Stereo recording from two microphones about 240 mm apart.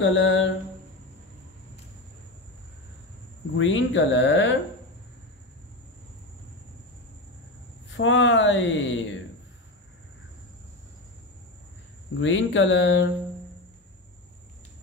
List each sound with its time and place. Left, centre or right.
0.0 s speech: left
3.5 s speech: left
7.9 s speech: left
12.2 s speech: left